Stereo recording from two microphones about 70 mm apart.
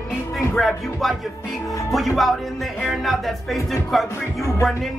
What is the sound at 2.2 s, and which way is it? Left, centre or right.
Speech, centre.